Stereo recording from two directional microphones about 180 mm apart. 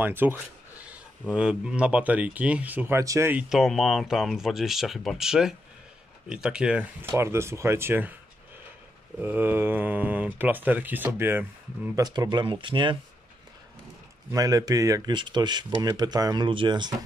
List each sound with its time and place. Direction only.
0.0 s speech: 10° right (ahead or behind)
9.2 s speech: 10° right (ahead or behind)
12.0 s speech: 20° right (ahead or behind)
14.3 s speech: 20° right (ahead or behind)